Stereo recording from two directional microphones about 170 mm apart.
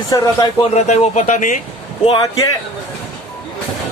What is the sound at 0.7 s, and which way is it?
Speech, 40° left (ahead or behind).